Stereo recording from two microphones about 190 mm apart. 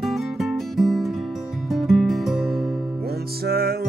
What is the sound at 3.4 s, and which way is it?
Music, 50° right (ahead or behind).